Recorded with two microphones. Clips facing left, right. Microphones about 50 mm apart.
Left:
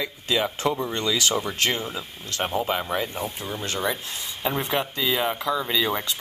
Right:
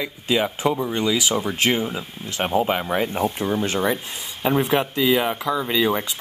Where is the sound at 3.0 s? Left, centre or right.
Right.